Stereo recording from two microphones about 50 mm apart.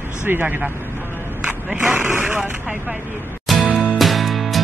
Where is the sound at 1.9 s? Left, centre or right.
Right.